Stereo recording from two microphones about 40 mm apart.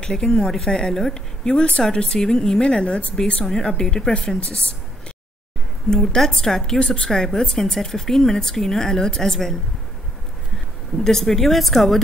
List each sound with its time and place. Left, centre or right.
0.0 s speech: left
5.9 s speech: centre
11.1 s speech: centre